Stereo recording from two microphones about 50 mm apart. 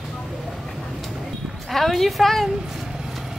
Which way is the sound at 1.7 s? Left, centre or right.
Centre.